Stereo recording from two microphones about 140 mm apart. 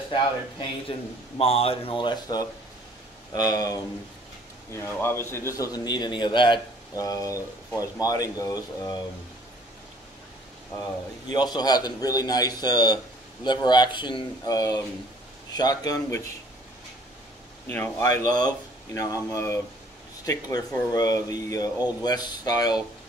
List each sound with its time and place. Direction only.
0.1 s a man's voice: 35° left (ahead or behind)
4.7 s a man's voice: 15° left (ahead or behind)
11.2 s a man's voice: 30° left (ahead or behind)
17.6 s a man's voice: 20° left (ahead or behind)